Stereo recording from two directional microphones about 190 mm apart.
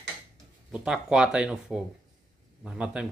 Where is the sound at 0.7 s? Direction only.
5° right (ahead or behind).